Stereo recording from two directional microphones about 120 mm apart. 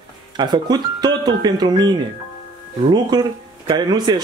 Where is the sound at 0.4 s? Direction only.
40° right (ahead or behind).